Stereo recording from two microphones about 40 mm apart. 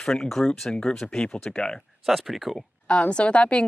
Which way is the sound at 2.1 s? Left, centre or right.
Centre.